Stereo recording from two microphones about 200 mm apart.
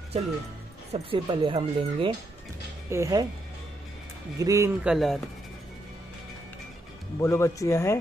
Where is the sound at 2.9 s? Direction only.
15° right (ahead or behind).